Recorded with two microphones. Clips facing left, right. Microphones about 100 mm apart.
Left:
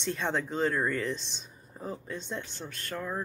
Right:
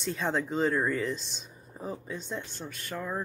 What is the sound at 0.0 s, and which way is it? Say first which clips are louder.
Speech: right 1 dB; centre (ahead or behind).